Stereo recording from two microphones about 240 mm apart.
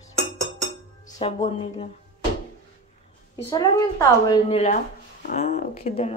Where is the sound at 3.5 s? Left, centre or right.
Left.